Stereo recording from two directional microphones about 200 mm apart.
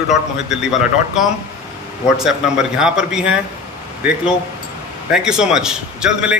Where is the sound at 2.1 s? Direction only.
5° right (ahead or behind).